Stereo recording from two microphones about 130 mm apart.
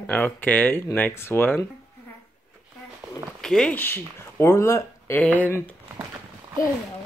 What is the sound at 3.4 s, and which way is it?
Speech, 5° left (ahead or behind).